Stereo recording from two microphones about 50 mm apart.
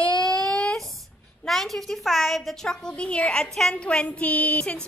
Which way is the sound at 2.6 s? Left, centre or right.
Centre.